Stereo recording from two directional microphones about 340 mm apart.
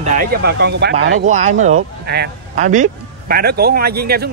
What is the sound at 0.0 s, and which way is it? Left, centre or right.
A man's voice, right.